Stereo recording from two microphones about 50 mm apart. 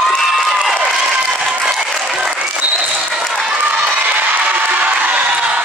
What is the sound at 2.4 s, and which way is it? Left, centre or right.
Applause, right.